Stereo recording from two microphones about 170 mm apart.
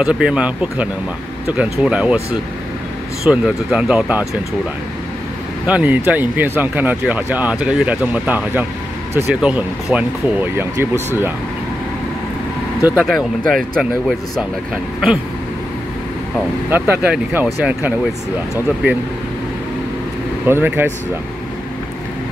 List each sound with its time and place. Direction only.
0.0 s speech: 5° right (ahead or behind)
3.3 s speech: 5° right (ahead or behind)
5.7 s speech: 10° right (ahead or behind)
12.8 s speech: 5° right (ahead or behind)
16.7 s speech: 10° right (ahead or behind)
18.8 s speech: 10° right (ahead or behind)
20.4 s speech: 10° right (ahead or behind)